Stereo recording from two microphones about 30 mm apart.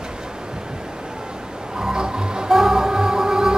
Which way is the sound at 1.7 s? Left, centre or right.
Right.